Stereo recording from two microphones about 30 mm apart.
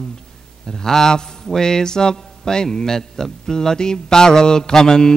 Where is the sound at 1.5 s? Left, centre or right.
Left.